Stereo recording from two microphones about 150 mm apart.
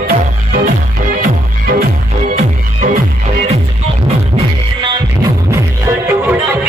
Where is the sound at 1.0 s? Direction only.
65° right (ahead or behind).